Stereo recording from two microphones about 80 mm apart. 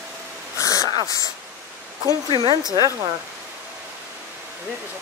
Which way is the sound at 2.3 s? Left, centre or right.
Right.